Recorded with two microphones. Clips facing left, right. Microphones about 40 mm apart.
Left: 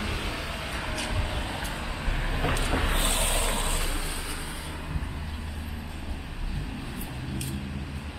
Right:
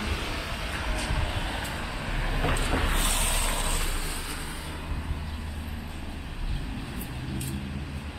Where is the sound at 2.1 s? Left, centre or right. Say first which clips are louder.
Even; centre.